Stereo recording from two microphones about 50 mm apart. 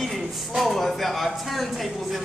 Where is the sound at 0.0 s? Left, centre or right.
Centre.